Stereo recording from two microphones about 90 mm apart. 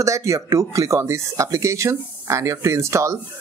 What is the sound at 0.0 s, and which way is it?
Speech, 35° right (ahead or behind).